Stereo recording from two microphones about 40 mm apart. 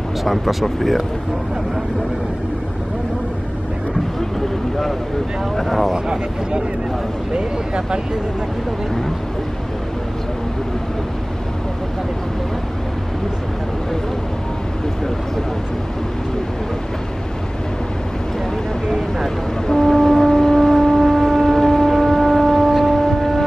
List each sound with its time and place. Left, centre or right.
0.2 s speech: centre
5.6 s speech: centre
7.3 s speech: right
18.9 s speech: centre
19.7 s foghorn: centre
22.7 s a sound: centre